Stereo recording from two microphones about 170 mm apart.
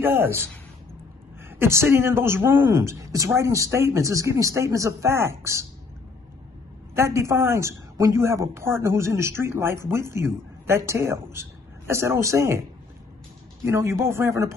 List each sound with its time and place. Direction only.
0.0 s a woman's voice: 10° right (ahead or behind)
1.6 s a woman's voice: 15° right (ahead or behind)
7.0 s a woman's voice: 15° right (ahead or behind)
13.7 s a woman's voice: 15° right (ahead or behind)